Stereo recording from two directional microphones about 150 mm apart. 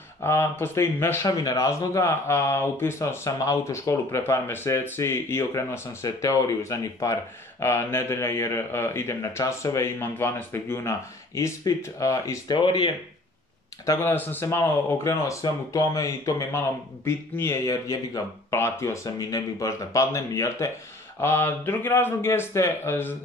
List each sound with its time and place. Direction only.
0.2 s a man's voice: 15° left (ahead or behind)
12.5 s speech: 30° left (ahead or behind)
13.8 s a man's voice: 15° left (ahead or behind)